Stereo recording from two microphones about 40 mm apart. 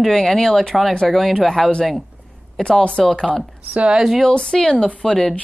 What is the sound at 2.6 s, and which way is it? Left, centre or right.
Speech, left.